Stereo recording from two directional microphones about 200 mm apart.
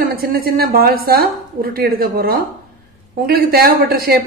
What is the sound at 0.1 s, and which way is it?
A woman's voice, 45° right (ahead or behind).